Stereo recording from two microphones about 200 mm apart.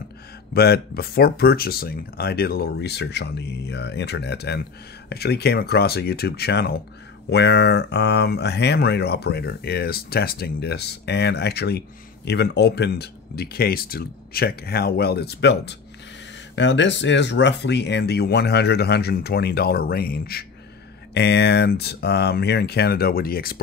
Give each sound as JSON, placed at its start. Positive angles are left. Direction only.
{"t": 0.6, "sound": "speech", "side_deg": 50}